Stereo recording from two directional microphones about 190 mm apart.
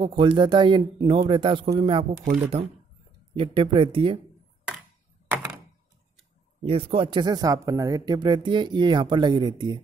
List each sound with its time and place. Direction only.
0.0 s speech: 25° right (ahead or behind)
3.3 s speech: 30° right (ahead or behind)
6.6 s speech: 30° right (ahead or behind)